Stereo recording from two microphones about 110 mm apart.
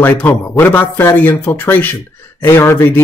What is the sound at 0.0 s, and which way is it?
Speech, 15° left (ahead or behind).